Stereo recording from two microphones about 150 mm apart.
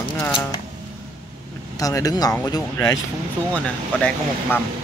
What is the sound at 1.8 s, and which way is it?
Speech, 25° left (ahead or behind).